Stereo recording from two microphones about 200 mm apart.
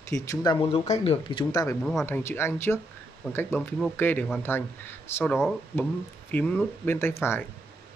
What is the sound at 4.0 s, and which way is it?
Speech, 10° left (ahead or behind).